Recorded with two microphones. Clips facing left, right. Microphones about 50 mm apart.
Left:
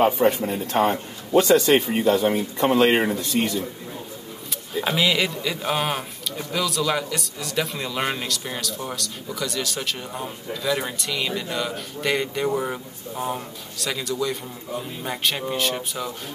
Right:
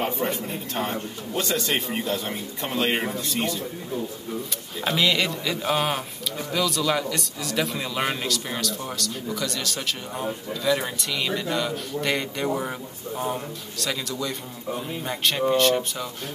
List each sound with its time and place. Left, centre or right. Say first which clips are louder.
0.0 s a man's voice: left 8 dB; left
2.9 s speech: left 5 dB; left
4.7 s a man's voice: left 1 dB; centre